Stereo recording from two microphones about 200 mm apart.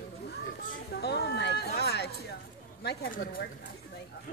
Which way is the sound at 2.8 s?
45° left (ahead or behind).